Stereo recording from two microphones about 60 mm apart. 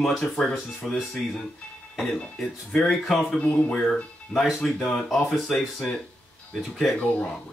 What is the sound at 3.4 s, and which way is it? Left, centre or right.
Speech, centre.